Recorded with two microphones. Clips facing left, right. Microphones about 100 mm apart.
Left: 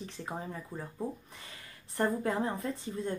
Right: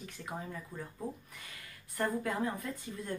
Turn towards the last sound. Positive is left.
turn(degrees=30)  # may be behind; listen again after turning